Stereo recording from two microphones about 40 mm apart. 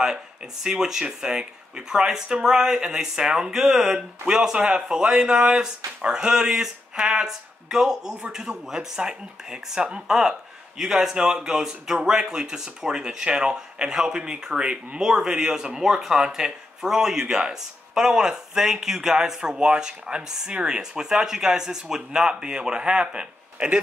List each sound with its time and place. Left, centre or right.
0.7 s speech: centre
10.8 s speech: centre